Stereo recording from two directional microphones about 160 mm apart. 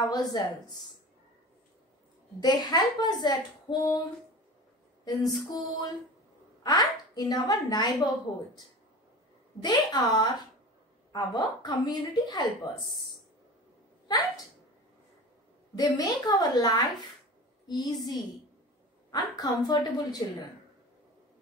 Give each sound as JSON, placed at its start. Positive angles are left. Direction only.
{"t": 0.1, "sound": "a woman's voice", "side_deg": 25}
{"t": 2.4, "sound": "a woman's voice", "side_deg": 25}
{"t": 5.5, "sound": "a woman's voice", "side_deg": 25}
{"t": 9.6, "sound": "a woman's voice", "side_deg": 25}
{"t": 14.0, "sound": "speech", "side_deg": 25}
{"t": 15.7, "sound": "a woman's voice", "side_deg": 25}